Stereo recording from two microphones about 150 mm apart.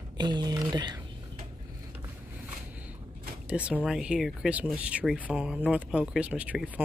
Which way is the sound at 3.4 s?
10° right (ahead or behind).